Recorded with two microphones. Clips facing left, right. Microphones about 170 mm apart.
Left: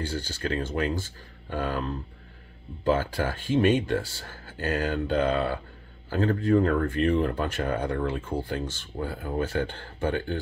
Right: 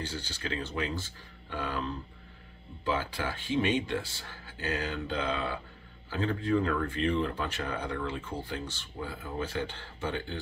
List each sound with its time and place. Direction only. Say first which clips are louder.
0.0 s speech: left 6 dB; 45° left (ahead or behind)